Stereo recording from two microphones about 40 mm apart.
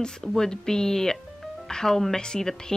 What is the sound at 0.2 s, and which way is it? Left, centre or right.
Speech, centre.